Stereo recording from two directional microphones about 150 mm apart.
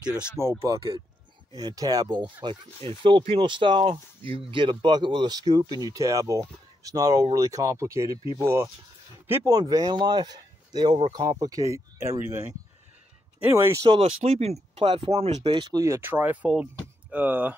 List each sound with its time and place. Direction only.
0.4 s speech: 20° right (ahead or behind)
2.8 s speech: 35° right (ahead or behind); by 12.4 s 20° right (ahead or behind)
13.4 s speech: 15° right (ahead or behind)
13.8 s speech: 40° right (ahead or behind)
15.8 s speech: 15° right (ahead or behind)